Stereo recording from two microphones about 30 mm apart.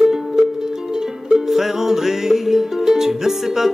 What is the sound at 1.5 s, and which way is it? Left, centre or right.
Music, centre.